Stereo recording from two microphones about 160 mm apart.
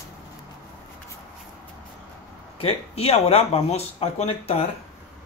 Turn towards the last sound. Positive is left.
turn(degrees=40)  # may be behind; listen again after turning